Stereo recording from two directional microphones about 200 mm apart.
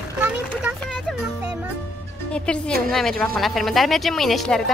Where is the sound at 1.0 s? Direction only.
5° right (ahead or behind).